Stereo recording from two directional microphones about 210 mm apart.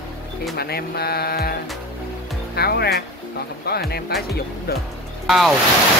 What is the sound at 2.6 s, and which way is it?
Mantra, 50° left (ahead or behind).